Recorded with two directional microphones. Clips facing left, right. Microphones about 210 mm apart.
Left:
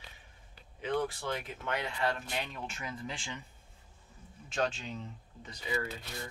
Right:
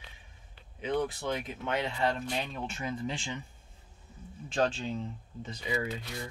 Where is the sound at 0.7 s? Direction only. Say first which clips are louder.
Right 2 dB; 20° right (ahead or behind).